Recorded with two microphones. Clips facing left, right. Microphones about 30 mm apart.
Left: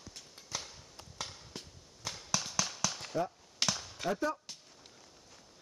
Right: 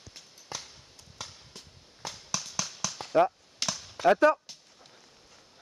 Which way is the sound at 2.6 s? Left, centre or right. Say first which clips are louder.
Even; centre.